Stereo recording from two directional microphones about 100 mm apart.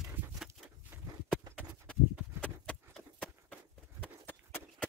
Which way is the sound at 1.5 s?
10° left (ahead or behind).